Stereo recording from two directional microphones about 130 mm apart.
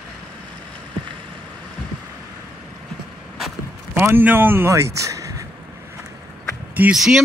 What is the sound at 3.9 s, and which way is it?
Speech, 15° right (ahead or behind).